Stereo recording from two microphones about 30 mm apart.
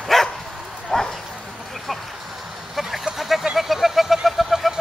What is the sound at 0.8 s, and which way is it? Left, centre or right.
Clip-clop, centre.